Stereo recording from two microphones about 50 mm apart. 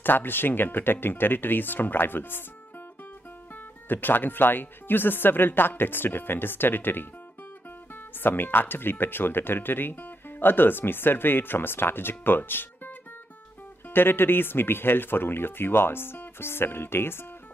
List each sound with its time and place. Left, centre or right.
0.0 s speech: left
3.5 s speech: left